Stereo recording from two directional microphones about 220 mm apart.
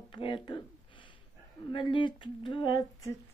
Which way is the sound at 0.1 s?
20° left (ahead or behind).